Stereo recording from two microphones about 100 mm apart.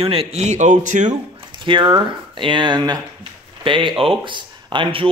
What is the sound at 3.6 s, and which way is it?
Speech, 55° right (ahead or behind).